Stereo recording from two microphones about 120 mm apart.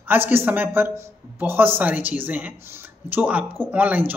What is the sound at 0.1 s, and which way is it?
Speech, 20° right (ahead or behind).